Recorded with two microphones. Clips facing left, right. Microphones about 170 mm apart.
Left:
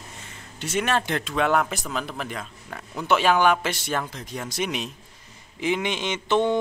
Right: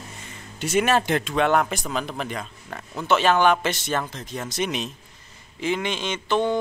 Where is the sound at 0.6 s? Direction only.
10° right (ahead or behind).